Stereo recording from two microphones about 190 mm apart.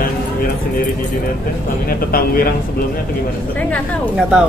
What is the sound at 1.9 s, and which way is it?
Speech, 50° left (ahead or behind).